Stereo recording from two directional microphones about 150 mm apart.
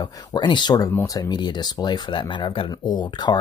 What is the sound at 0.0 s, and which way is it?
Speech, 30° left (ahead or behind).